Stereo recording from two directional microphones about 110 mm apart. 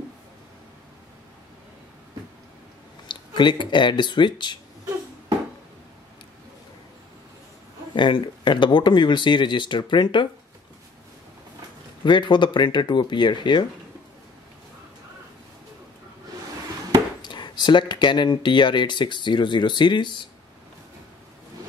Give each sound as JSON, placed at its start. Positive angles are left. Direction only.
{"t": 3.1, "sound": "speech", "side_deg": 45}
{"t": 7.9, "sound": "speech", "side_deg": 45}
{"t": 12.0, "sound": "speech", "side_deg": 45}
{"t": 17.2, "sound": "speech", "side_deg": 45}